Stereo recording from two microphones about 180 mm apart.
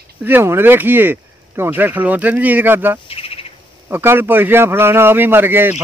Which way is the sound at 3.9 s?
10° right (ahead or behind).